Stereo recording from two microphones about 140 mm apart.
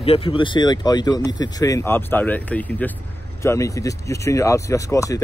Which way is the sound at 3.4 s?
20° left (ahead or behind).